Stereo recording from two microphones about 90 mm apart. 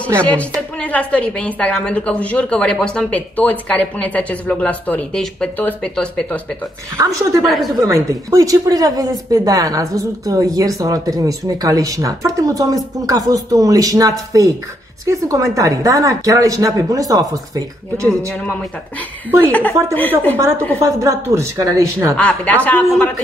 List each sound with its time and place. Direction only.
0.2 s a woman's voice: 15° left (ahead or behind)
5.6 s a woman's voice: 20° left (ahead or behind)
7.0 s speech: 40° right (ahead or behind)
19.4 s a woman's voice: 20° left (ahead or behind)
21.0 s speech: 35° right (ahead or behind)
22.1 s a woman's voice: 15° left (ahead or behind)